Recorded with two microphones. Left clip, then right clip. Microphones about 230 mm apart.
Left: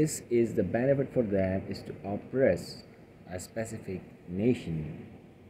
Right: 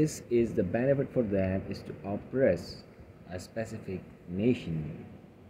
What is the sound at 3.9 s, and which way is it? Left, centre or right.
Speech, centre.